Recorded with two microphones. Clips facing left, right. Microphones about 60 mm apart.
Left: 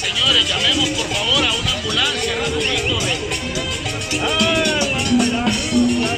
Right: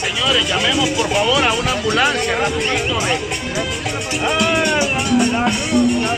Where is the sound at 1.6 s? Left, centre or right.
Right.